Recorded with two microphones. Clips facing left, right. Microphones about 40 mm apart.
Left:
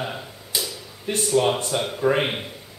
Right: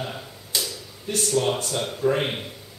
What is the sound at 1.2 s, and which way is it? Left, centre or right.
Speech, centre.